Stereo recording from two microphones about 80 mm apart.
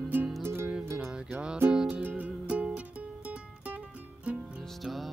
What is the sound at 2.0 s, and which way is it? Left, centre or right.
Music, right.